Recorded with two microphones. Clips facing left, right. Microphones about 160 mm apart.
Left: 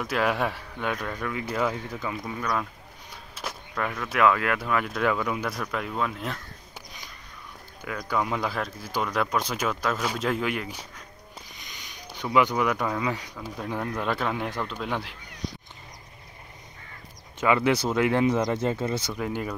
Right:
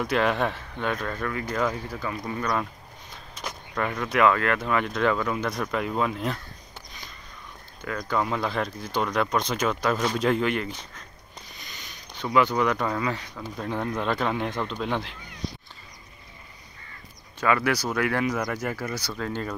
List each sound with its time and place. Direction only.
0.0 s speech: 5° left (ahead or behind)
1.9 s speech: 20° left (ahead or behind)
2.2 s speech: centre (ahead or behind)
7.8 s speech: 10° left (ahead or behind)
17.4 s speech: 20° left (ahead or behind)